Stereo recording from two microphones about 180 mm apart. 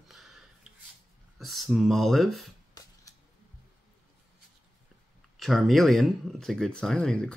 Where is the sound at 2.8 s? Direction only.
20° left (ahead or behind).